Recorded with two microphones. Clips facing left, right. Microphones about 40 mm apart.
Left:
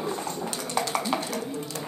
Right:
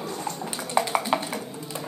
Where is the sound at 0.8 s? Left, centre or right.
Centre.